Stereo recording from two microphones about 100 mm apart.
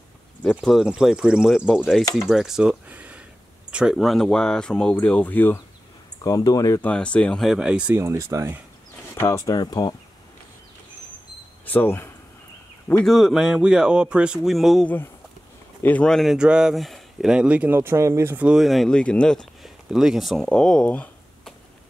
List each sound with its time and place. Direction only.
0.6 s speech: 5° right (ahead or behind)
2.9 s a sound: 15° right (ahead or behind)
3.7 s speech: 5° right (ahead or behind); by 5.6 s 20° left (ahead or behind)
6.2 s speech: 35° left (ahead or behind)
6.8 s speech: 10° left (ahead or behind); by 7.9 s 10° right (ahead or behind)
7.9 s speech: 30° right (ahead or behind)
9.2 s speech: 30° left (ahead or behind)
11.6 s speech: 20° left (ahead or behind)
13.0 s speech: centre (ahead or behind)
15.8 s speech: 15° left (ahead or behind)
16.1 s speech: centre (ahead or behind)
16.3 s speech: 10° right (ahead or behind)
17.7 s speech: 25° right (ahead or behind)
18.4 s speech: 5° right (ahead or behind); by 21.1 s 10° left (ahead or behind)